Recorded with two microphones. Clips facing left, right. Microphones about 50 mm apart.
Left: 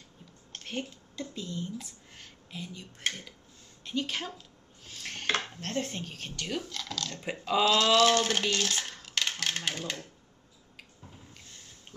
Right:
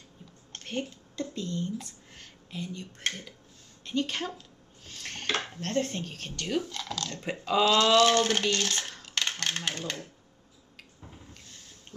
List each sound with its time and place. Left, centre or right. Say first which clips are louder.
0.5 s a woman's voice: right 2 dB; centre
4.8 s dishes: left 1 dB; centre
5.7 s speech: right 4 dB; centre